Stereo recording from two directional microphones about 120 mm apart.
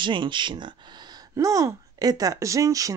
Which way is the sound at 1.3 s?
25° right (ahead or behind).